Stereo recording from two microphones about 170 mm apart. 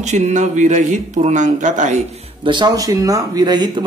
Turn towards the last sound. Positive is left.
turn(degrees=-25)  # may be behind; listen again after turning